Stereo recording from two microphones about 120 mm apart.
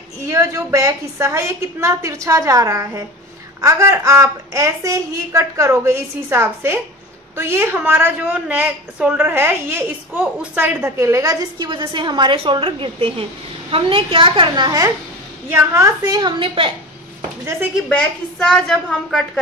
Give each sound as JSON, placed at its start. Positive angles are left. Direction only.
{"t": 0.3, "sound": "a woman's voice", "side_deg": -25}
{"t": 15.5, "sound": "a woman's voice", "side_deg": -25}
{"t": 17.8, "sound": "a woman's voice", "side_deg": 5}